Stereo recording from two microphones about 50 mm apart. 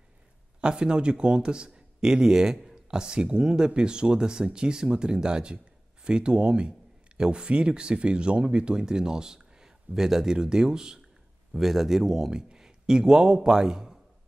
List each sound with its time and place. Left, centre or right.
0.6 s a man's voice: centre